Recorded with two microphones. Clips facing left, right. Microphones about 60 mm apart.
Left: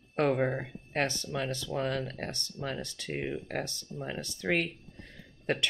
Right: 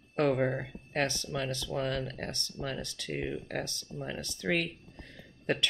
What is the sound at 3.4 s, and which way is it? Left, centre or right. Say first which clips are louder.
Speech: left 1 dB; left.